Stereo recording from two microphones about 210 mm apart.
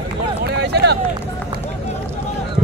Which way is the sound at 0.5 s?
50° right (ahead or behind).